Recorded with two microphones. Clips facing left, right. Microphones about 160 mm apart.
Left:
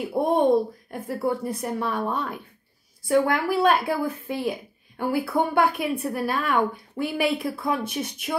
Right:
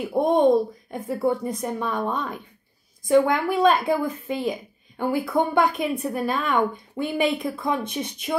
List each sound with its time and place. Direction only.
0.0 s speech: 5° left (ahead or behind)